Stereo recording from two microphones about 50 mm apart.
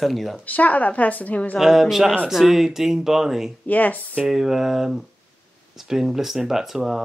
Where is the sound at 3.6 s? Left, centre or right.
Left.